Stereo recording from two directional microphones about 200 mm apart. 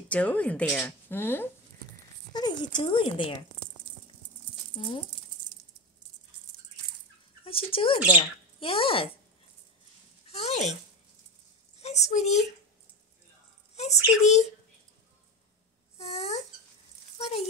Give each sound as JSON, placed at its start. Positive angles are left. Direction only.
{"t": 0.1, "sound": "speech", "side_deg": 5}
{"t": 2.3, "sound": "speech", "side_deg": 20}
{"t": 4.7, "sound": "speech", "side_deg": 25}
{"t": 7.4, "sound": "speech", "side_deg": 25}
{"t": 10.2, "sound": "speech", "side_deg": 30}
{"t": 11.8, "sound": "a child's voice", "side_deg": 35}
{"t": 13.7, "sound": "a child's voice", "side_deg": 35}
{"t": 16.0, "sound": "a child's voice", "side_deg": 30}